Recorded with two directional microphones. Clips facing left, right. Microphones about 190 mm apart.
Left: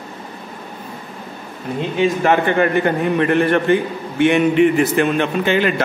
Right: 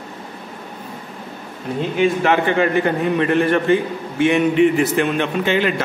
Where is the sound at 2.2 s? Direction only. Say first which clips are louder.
Left 1 dB; 50° left (ahead or behind).